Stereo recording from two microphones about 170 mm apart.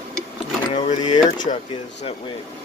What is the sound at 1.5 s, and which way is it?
Speech, 40° left (ahead or behind).